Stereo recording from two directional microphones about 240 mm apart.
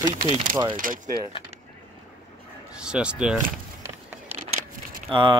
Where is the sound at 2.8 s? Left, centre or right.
Centre.